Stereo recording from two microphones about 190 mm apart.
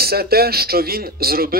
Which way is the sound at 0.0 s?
55° right (ahead or behind).